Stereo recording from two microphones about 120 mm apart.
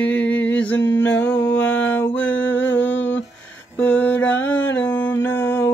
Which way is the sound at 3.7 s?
15° left (ahead or behind).